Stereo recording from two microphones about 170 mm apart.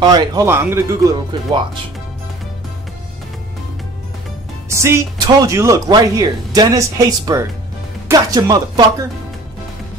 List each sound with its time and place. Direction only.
0.0 s speech: 25° right (ahead or behind)
4.6 s speech: 15° right (ahead or behind)